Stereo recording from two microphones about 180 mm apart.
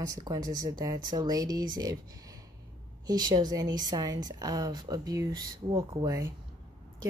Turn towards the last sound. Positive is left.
turn(degrees=-20)  # may be behind; listen again after turning